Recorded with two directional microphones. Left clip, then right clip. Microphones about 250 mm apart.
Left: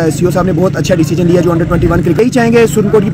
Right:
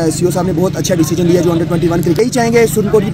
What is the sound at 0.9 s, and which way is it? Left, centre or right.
Speech, left.